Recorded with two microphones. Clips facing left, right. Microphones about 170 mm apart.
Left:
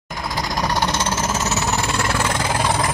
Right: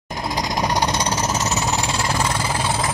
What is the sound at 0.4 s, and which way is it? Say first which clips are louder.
Jackhammer: even; 20° right (ahead or behind).